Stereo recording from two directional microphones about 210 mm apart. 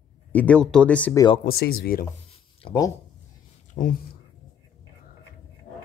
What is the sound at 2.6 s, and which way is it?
Speech, 20° left (ahead or behind).